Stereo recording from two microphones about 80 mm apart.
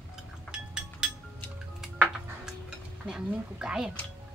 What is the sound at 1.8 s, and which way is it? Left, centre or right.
Music, centre.